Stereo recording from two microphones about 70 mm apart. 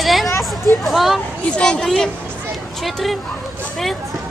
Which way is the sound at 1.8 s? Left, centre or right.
Centre.